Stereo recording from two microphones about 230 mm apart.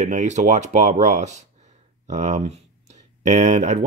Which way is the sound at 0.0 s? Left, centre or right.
Right.